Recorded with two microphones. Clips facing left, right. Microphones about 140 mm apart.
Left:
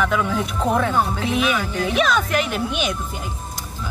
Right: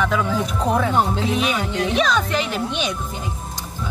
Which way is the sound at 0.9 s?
20° right (ahead or behind).